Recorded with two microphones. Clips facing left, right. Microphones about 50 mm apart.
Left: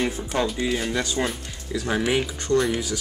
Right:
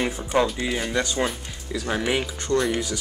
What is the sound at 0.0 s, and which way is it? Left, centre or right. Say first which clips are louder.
Speech: right 2 dB; centre.